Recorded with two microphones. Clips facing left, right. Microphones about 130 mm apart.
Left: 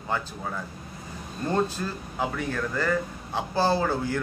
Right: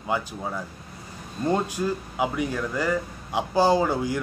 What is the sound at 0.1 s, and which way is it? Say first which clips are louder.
Speech: right 3 dB; 15° right (ahead or behind).